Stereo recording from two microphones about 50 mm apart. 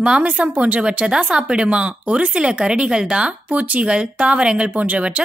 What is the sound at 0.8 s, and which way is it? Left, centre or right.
Speech, centre.